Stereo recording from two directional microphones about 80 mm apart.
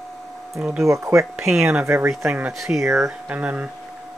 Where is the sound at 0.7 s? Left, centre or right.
Right.